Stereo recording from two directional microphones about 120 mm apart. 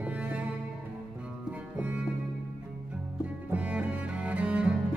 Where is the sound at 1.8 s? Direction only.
10° right (ahead or behind).